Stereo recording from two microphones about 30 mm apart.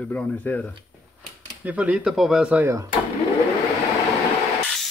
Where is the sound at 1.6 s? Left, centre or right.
Right.